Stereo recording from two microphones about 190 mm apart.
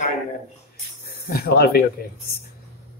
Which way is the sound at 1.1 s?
50° left (ahead or behind).